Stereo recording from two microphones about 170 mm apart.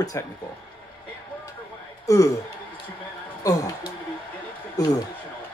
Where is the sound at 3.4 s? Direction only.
20° left (ahead or behind).